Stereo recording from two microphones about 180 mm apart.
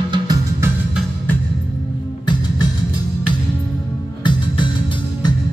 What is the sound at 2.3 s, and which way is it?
Music, 25° left (ahead or behind).